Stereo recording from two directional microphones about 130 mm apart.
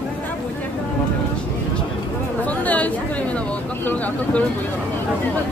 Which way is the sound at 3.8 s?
10° left (ahead or behind).